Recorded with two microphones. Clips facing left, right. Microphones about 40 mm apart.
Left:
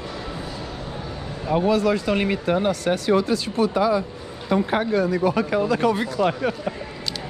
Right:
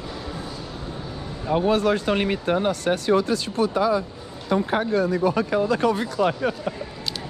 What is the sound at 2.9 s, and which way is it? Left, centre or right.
Speech, left.